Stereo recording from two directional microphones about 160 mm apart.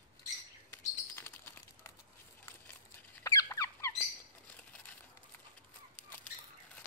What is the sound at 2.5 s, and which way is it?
Squeak, 15° left (ahead or behind).